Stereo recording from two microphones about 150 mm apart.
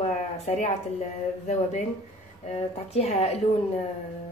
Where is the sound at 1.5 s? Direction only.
50° left (ahead or behind).